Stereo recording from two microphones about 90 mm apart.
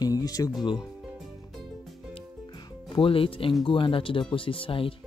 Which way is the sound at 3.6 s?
70° left (ahead or behind).